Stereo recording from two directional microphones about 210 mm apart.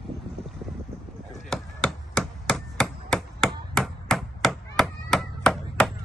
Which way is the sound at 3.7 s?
Centre (ahead or behind).